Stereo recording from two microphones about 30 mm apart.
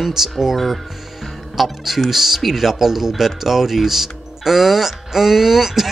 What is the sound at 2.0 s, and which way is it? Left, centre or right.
Speech, centre.